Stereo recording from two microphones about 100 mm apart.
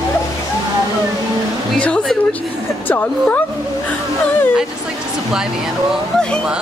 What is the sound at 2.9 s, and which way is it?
Speech, 20° left (ahead or behind).